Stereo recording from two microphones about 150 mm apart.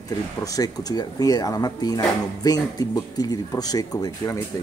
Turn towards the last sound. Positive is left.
turn(degrees=20)  # may be behind; listen again after turning